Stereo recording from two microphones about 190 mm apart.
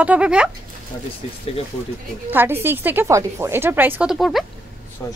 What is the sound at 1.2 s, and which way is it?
Speech, 30° left (ahead or behind).